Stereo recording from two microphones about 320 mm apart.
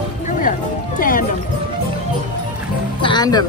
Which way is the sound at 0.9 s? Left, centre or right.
Left.